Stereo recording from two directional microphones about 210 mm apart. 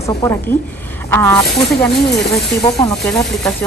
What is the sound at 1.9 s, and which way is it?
Speech, 55° left (ahead or behind).